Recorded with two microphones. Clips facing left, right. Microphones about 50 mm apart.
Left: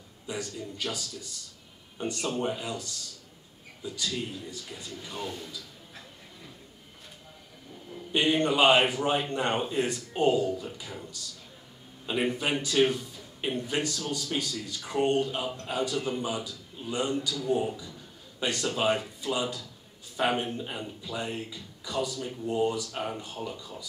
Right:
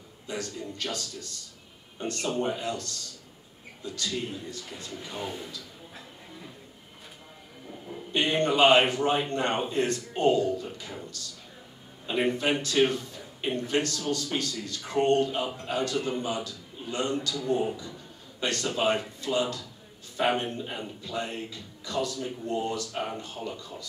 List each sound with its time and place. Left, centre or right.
0.3 s speech: centre
0.8 s a man's voice: centre
2.0 s speech: centre
2.2 s a man's voice: centre
2.6 s speech: centre
4.9 s speech: centre
8.1 s a man's voice: centre
12.1 s a man's voice: centre
15.4 s speech: centre
15.7 s a man's voice: centre